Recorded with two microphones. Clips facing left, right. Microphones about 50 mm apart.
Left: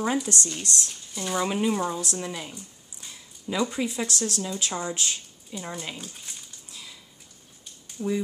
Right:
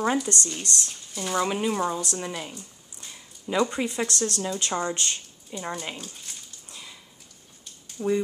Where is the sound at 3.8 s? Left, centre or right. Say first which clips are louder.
Right 1 dB; right.